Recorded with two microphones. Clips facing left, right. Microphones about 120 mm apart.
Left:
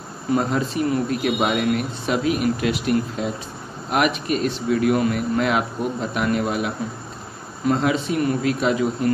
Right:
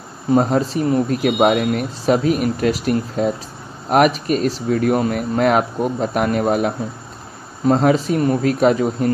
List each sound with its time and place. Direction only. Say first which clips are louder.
0.4 s speech: right 5 dB; 35° right (ahead or behind)